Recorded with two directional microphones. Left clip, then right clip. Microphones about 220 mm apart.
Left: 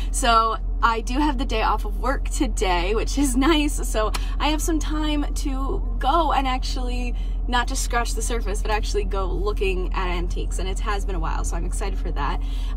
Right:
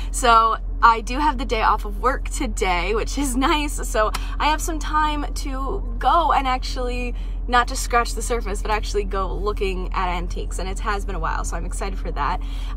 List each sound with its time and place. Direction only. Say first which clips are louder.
0.2 s a woman's voice: right 3 dB; 15° right (ahead or behind)